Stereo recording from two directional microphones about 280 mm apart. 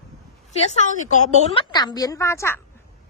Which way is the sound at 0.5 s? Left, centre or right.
Left.